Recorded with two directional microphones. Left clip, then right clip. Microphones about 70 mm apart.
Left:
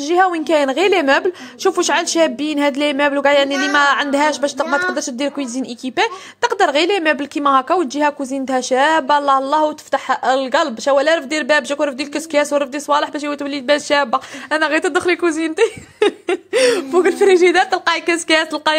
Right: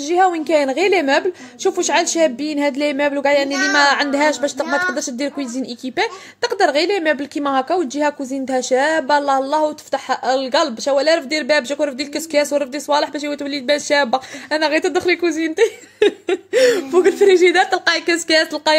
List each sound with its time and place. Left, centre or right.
0.1 s a woman's voice: centre
4.3 s a woman's voice: right
4.6 s speech: centre
4.9 s a woman's voice: centre
16.9 s a woman's voice: right